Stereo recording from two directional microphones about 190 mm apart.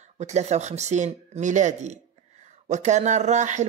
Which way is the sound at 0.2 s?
35° right (ahead or behind).